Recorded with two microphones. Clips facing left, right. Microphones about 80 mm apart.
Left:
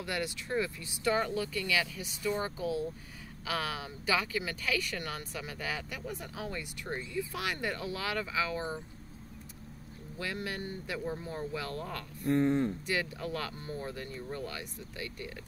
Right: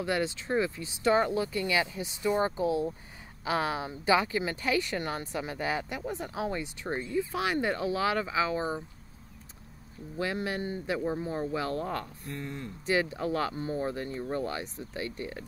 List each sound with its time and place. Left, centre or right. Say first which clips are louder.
0.0 s speech: right 6 dB; right
10.1 s speech: right 6 dB; right
12.3 s speech: left 11 dB; left
12.8 s speech: right 6 dB; right